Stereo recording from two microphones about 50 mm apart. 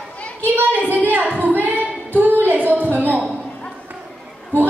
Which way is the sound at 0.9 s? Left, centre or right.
Right.